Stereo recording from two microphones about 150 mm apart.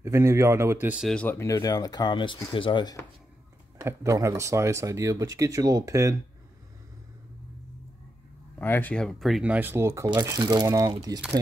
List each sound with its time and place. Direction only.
0.0 s a man's voice: 20° right (ahead or behind)
1.0 s speech: 10° left (ahead or behind); by 3.0 s 30° left (ahead or behind)
3.8 s speech: 20° right (ahead or behind)
8.5 s speech: 15° left (ahead or behind); by 11.1 s 25° right (ahead or behind)